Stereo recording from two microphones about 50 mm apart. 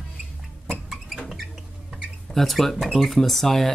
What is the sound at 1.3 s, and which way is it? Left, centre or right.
Rodents, centre.